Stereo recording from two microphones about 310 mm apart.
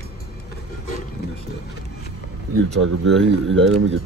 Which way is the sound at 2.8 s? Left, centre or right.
Right.